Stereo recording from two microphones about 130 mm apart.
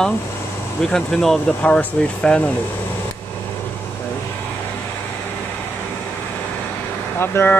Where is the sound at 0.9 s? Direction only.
5° left (ahead or behind).